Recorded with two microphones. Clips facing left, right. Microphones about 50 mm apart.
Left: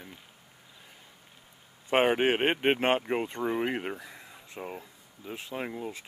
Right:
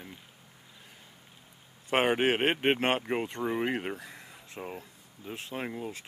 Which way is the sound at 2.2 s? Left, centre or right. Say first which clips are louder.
Left 1 dB; centre.